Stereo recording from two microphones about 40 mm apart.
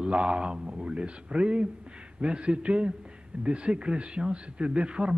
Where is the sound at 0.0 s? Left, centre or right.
Right.